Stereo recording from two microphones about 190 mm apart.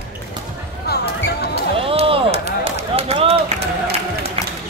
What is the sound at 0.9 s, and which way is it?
Basketball bounce, 55° left (ahead or behind).